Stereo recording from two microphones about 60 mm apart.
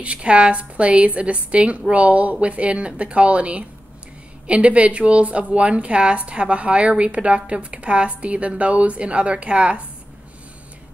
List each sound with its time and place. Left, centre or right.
0.0 s speech: centre